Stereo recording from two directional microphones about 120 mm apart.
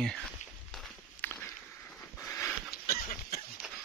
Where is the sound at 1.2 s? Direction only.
15° left (ahead or behind).